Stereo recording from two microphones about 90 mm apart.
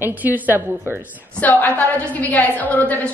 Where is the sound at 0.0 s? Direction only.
20° right (ahead or behind).